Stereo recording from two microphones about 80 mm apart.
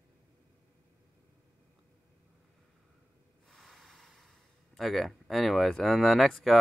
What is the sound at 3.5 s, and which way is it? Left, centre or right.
Speech, centre.